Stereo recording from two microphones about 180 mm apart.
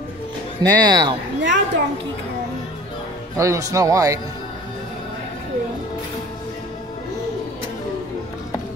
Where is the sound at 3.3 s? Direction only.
15° right (ahead or behind).